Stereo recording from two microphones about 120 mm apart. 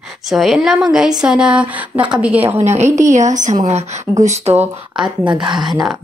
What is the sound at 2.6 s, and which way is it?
Speech, 65° right (ahead or behind).